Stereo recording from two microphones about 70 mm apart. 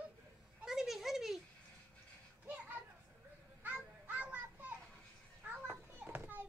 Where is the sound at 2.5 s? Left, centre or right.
Centre.